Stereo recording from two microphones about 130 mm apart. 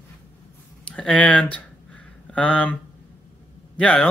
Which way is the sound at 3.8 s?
10° left (ahead or behind).